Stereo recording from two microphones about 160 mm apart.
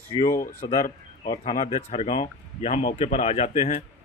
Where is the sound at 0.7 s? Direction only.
25° left (ahead or behind).